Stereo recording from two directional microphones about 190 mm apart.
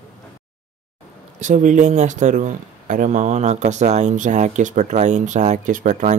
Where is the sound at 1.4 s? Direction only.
40° right (ahead or behind).